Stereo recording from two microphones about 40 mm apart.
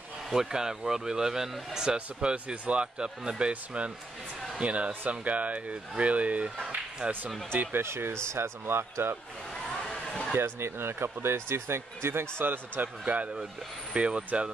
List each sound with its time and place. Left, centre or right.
0.3 s speech: centre
2.3 s speech: right
7.7 s speech: right
9.7 s a sound: centre
10.3 s speech: right
13.0 s speech: right